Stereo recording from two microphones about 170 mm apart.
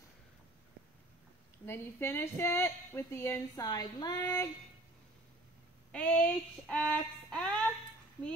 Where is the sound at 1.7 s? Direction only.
15° left (ahead or behind).